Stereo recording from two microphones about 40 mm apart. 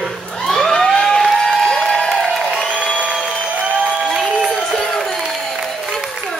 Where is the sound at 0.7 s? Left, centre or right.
Left.